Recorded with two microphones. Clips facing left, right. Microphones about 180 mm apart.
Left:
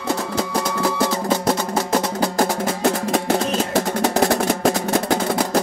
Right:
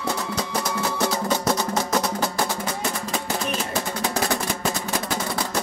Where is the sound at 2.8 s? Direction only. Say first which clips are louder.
Left 12 dB; 80° left; by 5.2 s 60° left (ahead or behind).